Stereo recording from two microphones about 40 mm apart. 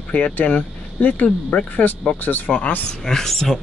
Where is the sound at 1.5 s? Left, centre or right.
Left.